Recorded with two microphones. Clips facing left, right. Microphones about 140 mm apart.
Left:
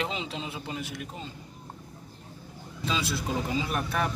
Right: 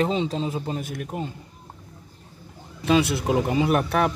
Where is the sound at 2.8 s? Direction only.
65° right (ahead or behind).